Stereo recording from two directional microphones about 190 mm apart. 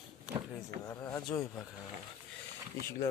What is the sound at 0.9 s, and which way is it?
Speech, 15° left (ahead or behind).